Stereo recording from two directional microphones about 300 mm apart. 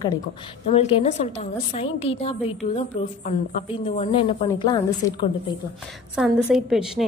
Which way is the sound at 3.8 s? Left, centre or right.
Centre.